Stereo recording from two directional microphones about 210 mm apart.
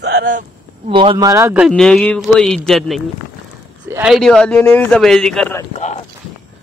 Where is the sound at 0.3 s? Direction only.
35° right (ahead or behind).